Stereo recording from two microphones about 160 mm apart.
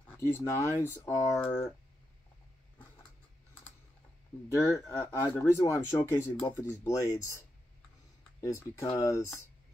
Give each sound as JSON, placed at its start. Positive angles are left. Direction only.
{"t": 0.2, "sound": "speech", "side_deg": 20}
{"t": 4.5, "sound": "speech", "side_deg": 20}